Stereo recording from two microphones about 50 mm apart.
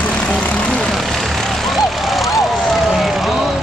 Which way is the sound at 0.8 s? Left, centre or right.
Centre.